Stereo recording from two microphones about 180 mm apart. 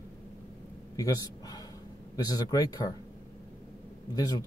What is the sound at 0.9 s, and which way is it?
A man's voice, 20° left (ahead or behind).